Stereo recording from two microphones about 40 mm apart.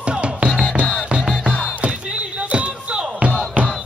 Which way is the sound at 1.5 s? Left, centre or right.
Left.